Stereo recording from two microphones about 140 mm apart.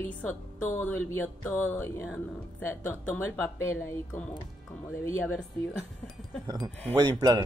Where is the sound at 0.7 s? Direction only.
15° left (ahead or behind).